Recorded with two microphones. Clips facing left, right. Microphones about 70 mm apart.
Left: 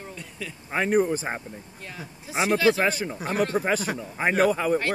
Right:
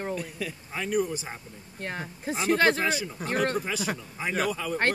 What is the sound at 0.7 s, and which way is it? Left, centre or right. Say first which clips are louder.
Speech: left 6 dB; left.